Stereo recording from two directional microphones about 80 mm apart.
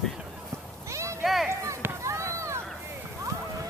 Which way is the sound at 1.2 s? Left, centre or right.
Centre.